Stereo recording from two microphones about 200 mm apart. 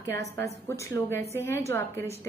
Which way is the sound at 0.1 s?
15° left (ahead or behind).